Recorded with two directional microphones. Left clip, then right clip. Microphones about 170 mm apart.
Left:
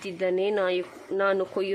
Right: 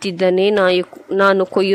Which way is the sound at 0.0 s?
40° right (ahead or behind).